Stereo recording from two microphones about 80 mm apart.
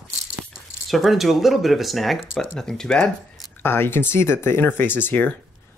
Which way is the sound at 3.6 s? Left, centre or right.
Left.